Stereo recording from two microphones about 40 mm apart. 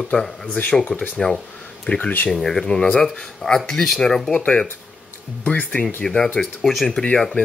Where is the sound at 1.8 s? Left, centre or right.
Left.